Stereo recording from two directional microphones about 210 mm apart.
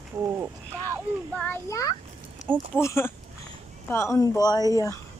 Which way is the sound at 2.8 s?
10° left (ahead or behind).